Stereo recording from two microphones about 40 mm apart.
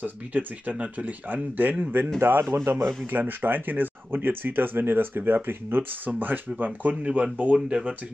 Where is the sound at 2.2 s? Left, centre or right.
Right.